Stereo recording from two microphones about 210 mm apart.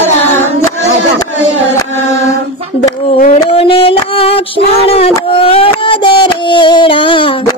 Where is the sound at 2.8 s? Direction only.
30° left (ahead or behind).